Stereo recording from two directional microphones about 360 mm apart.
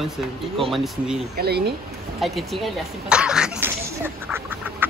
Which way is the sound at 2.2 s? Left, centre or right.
Centre.